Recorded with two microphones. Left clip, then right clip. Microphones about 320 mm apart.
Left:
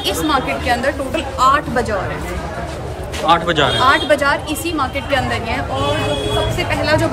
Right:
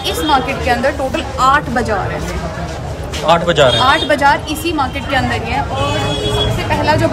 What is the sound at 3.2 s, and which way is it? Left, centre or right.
Speech, centre.